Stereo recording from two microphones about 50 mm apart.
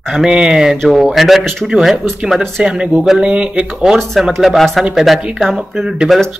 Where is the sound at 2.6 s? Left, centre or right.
Centre.